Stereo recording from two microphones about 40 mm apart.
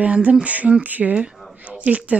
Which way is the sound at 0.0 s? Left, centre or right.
Right.